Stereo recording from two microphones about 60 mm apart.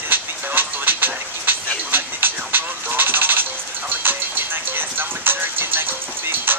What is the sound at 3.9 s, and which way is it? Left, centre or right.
Music, right.